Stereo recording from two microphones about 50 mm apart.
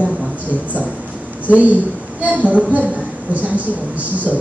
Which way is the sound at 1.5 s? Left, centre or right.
Right.